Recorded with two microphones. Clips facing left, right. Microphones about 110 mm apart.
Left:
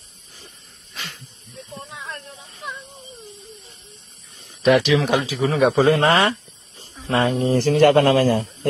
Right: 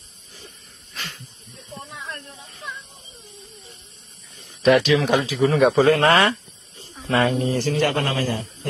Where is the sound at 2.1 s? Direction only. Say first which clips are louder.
Left 1 dB; 15° left (ahead or behind).